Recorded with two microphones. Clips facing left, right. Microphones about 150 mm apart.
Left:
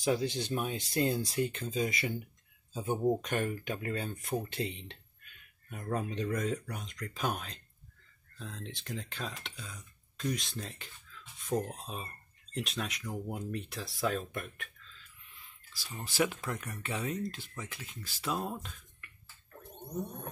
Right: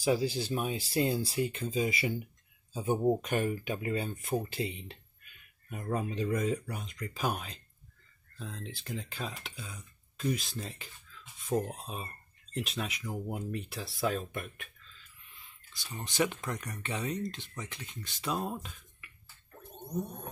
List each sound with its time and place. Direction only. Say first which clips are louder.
0.0 s speech: right 2 dB; 5° right (ahead or behind)
16.0 s speech: even; 5° left (ahead or behind)